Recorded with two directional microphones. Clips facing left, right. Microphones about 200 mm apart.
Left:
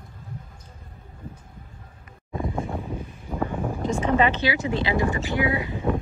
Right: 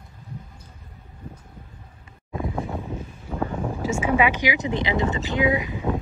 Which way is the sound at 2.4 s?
5° right (ahead or behind).